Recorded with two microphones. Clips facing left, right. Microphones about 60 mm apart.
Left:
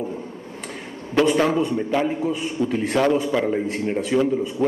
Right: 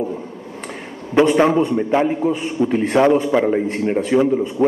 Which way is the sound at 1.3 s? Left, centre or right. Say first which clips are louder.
Right 5 dB; right.